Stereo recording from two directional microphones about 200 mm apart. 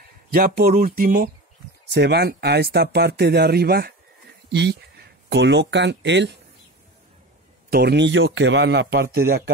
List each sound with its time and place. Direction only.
0.3 s speech: 45° right (ahead or behind)
7.7 s a man's voice: 55° right (ahead or behind)